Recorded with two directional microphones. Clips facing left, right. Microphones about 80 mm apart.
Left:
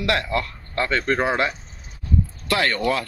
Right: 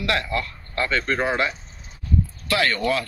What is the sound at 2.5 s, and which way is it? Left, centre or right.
Speech, centre.